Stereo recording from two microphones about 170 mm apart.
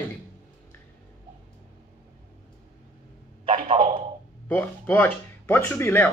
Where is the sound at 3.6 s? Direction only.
30° right (ahead or behind).